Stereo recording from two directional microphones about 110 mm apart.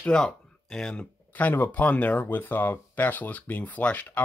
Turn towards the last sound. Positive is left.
turn(degrees=15)  # may be behind; listen again after turning